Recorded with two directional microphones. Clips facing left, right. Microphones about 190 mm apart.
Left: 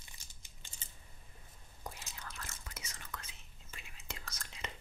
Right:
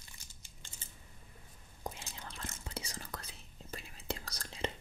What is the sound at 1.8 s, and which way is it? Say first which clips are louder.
Whispering: right 4 dB; 20° right (ahead or behind).